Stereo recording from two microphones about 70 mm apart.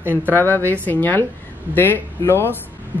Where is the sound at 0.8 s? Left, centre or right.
Left.